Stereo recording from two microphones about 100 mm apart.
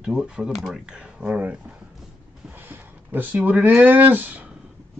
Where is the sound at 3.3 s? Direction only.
15° right (ahead or behind).